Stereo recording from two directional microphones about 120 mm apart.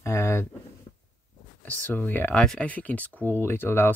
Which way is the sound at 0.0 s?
20° left (ahead or behind).